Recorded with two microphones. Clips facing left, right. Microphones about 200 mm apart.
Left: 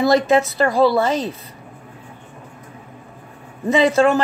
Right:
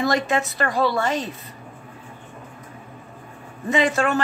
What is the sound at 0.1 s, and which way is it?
Speech, 30° left (ahead or behind).